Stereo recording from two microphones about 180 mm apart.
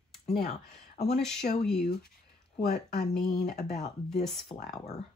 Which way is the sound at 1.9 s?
60° left (ahead or behind).